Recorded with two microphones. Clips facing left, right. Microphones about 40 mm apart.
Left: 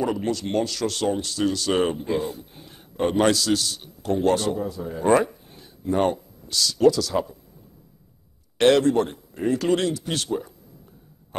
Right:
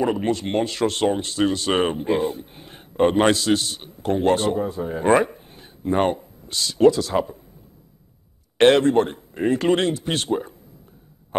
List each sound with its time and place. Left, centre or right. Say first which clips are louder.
0.0 s speech: right 3 dB; right
8.5 s speech: right 2 dB; right